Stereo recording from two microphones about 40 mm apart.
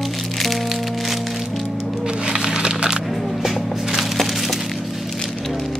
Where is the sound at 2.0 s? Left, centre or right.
Right.